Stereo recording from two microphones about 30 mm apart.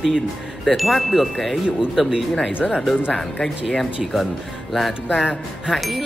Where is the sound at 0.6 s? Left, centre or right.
Centre.